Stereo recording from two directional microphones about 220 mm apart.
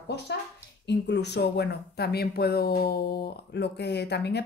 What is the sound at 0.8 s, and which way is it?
Speech, 50° left (ahead or behind).